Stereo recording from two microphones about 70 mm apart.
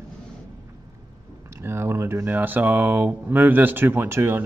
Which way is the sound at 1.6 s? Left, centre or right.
Right.